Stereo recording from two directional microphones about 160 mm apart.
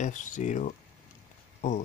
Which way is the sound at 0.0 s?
50° left (ahead or behind).